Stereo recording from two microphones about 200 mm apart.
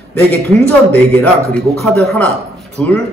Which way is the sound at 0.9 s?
10° left (ahead or behind).